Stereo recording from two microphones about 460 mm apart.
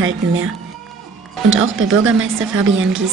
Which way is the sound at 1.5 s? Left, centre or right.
Right.